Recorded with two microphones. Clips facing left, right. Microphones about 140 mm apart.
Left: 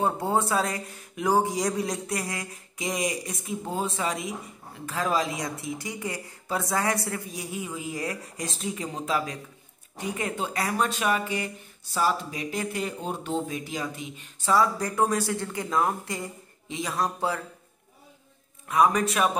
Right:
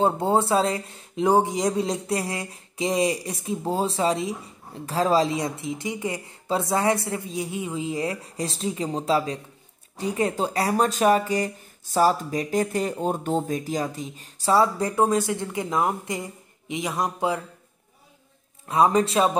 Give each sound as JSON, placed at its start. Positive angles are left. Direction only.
{"t": 0.0, "sound": "speech", "side_deg": -25}
{"t": 18.7, "sound": "speech", "side_deg": -30}